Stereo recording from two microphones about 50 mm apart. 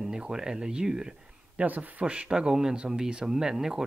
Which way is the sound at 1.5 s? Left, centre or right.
Right.